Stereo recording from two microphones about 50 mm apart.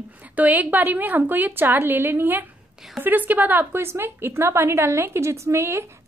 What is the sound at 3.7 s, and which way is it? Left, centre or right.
A woman's voice, right.